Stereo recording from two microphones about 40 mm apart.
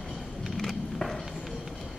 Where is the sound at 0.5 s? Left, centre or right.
Centre.